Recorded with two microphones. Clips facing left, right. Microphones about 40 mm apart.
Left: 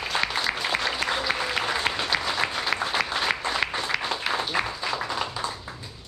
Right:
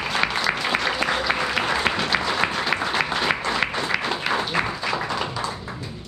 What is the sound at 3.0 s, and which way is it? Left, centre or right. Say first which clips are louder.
Applause: right 3 dB; right.